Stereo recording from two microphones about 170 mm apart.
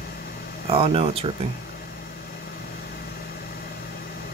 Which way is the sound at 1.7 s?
65° left (ahead or behind).